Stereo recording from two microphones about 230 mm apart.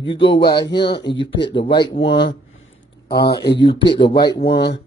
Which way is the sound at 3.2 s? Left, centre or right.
Left.